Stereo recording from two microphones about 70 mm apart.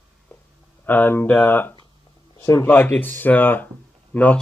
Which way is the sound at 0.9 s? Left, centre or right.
Left.